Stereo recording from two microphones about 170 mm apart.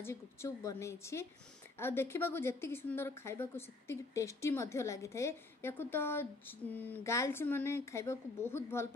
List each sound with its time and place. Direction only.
0.0 s a woman's voice: 15° left (ahead or behind)